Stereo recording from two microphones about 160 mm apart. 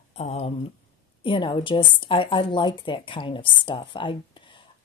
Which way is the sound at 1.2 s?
30° left (ahead or behind).